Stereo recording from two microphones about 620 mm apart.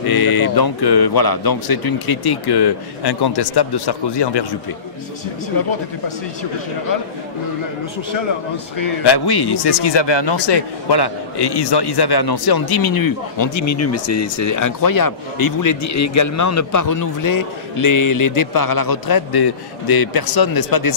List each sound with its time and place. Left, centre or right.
0.0 s a man's voice: left
9.0 s a man's voice: left